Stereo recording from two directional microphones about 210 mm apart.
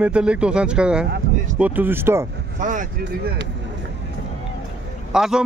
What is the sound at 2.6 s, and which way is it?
Speech, 35° right (ahead or behind).